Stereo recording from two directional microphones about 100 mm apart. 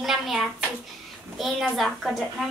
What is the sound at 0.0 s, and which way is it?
Hands, centre (ahead or behind).